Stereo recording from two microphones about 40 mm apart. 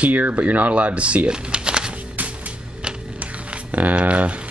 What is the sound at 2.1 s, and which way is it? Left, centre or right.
Music, right.